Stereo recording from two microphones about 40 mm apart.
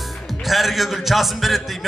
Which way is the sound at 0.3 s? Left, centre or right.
Centre.